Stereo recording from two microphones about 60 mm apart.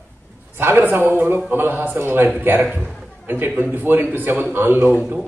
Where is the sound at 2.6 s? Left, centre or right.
Centre.